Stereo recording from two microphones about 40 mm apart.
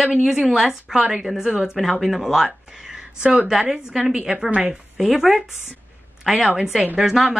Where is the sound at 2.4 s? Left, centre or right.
Centre.